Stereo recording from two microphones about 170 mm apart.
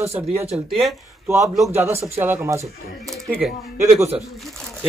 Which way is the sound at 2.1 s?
15° right (ahead or behind).